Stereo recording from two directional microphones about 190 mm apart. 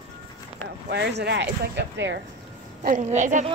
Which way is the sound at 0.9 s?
60° right (ahead or behind).